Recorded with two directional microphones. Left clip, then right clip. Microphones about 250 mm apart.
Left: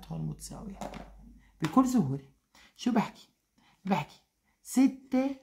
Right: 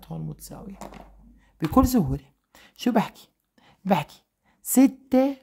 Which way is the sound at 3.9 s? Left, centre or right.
Right.